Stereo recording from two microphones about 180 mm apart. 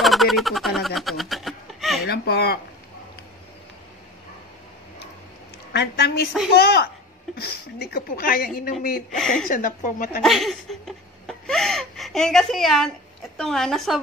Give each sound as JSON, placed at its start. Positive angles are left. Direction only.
{"t": 0.0, "sound": "a sound", "side_deg": 0}
{"t": 2.0, "sound": "a woman's voice", "side_deg": 65}
{"t": 5.7, "sound": "a woman's voice", "side_deg": 65}
{"t": 9.2, "sound": "a woman's voice", "side_deg": 0}
{"t": 9.5, "sound": "speech", "side_deg": 45}
{"t": 10.2, "sound": "a sound", "side_deg": 0}
{"t": 13.4, "sound": "a woman's voice", "side_deg": 0}